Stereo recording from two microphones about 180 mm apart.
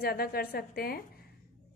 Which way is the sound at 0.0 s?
60° left (ahead or behind).